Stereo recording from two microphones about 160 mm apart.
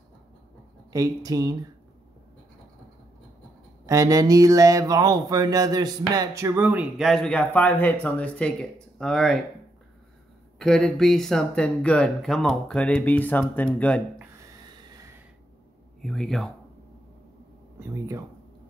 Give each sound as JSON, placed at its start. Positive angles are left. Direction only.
{"t": 0.9, "sound": "speech", "side_deg": -20}
{"t": 3.8, "sound": "speech", "side_deg": -20}
{"t": 7.0, "sound": "speech", "side_deg": 5}
{"t": 10.6, "sound": "speech", "side_deg": 5}
{"t": 14.7, "sound": "a sound", "side_deg": -25}
{"t": 16.0, "sound": "speech", "side_deg": 0}
{"t": 17.7, "sound": "speech", "side_deg": -20}